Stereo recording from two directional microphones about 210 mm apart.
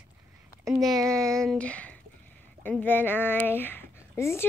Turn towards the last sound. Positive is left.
turn(degrees=10)  # may be behind; listen again after turning